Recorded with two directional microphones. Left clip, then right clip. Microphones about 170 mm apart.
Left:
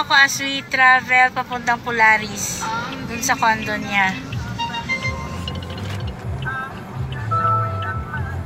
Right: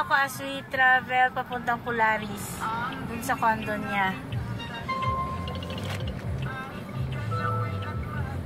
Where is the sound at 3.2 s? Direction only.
Centre (ahead or behind).